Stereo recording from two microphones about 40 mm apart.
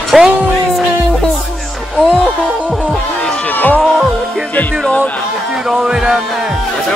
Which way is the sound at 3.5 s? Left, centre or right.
Left.